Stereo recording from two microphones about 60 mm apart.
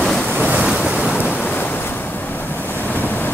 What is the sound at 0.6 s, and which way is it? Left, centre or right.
Waves, centre.